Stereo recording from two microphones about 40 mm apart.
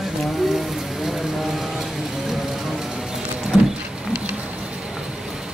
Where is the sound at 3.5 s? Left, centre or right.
Right.